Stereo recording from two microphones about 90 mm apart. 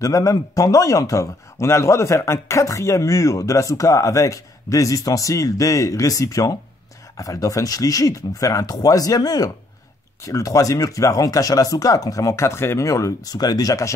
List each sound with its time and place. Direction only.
0.0 s speech: 35° left (ahead or behind)